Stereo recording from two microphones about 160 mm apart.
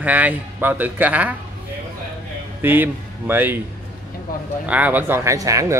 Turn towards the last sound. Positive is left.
turn(degrees=-20)  # may be behind; listen again after turning